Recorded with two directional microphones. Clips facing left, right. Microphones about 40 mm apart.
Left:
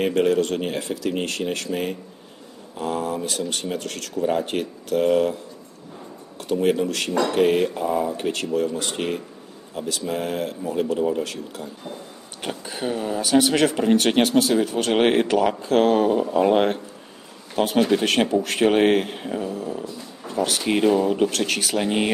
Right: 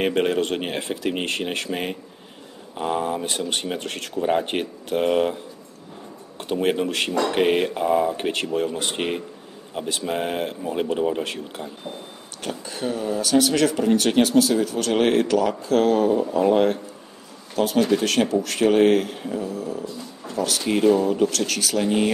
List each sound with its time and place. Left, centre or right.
0.0 s speech: right
12.4 s speech: centre